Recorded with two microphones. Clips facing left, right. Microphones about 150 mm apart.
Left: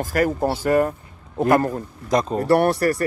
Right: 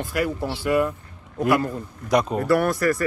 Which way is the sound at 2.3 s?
10° right (ahead or behind).